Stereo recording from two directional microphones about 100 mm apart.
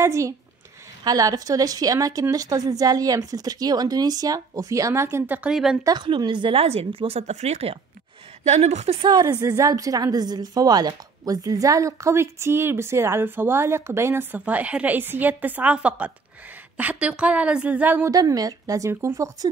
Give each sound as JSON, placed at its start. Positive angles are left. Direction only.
{"t": 0.0, "sound": "a woman's voice", "side_deg": -30}
{"t": 5.5, "sound": "speech", "side_deg": -5}
{"t": 5.9, "sound": "a woman's voice", "side_deg": -50}
{"t": 6.6, "sound": "speech", "side_deg": -90}
{"t": 9.4, "sound": "speech", "side_deg": -30}
{"t": 14.4, "sound": "a woman's voice", "side_deg": -15}
{"t": 18.1, "sound": "a woman's voice", "side_deg": -40}